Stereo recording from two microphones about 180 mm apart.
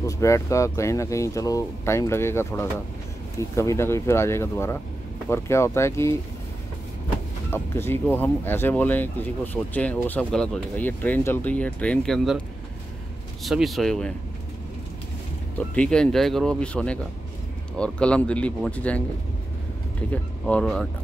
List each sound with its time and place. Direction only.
0.0 s speech: 15° left (ahead or behind)
7.5 s speech: 15° left (ahead or behind)
13.4 s speech: centre (ahead or behind)
15.5 s speech: 5° left (ahead or behind)
20.1 s speech: 5° left (ahead or behind)